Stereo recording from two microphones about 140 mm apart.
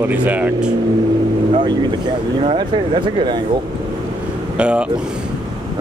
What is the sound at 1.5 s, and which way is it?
Speech, 40° right (ahead or behind).